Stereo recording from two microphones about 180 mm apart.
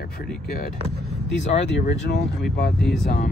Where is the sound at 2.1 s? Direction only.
60° left (ahead or behind).